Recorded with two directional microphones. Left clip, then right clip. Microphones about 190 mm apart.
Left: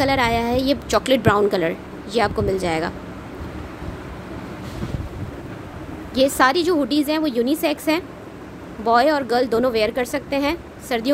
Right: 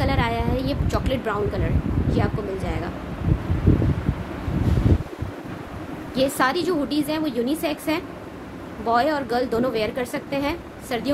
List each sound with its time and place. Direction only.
0.0 s a woman's voice: 35° left (ahead or behind)
6.1 s a woman's voice: 40° left (ahead or behind)